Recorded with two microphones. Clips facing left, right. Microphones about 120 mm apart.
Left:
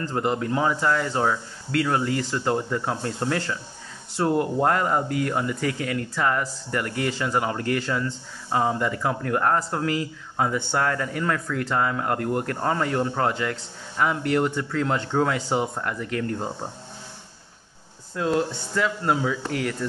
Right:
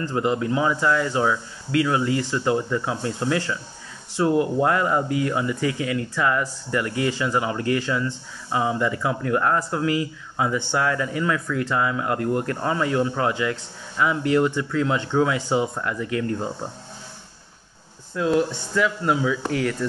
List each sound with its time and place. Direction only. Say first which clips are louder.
0.3 s speech: right 1 dB; 45° left (ahead or behind)
18.8 s speech: right 2 dB; 30° left (ahead or behind)